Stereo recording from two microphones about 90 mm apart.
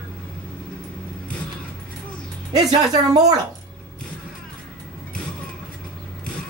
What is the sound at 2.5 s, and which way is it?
Speech, 45° right (ahead or behind).